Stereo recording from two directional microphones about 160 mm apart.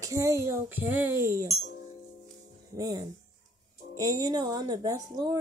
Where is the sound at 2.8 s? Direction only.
25° right (ahead or behind).